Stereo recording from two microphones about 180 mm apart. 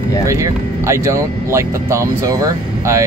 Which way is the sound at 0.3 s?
15° right (ahead or behind).